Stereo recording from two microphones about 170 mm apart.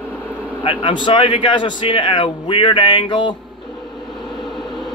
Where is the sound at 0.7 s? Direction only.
30° left (ahead or behind).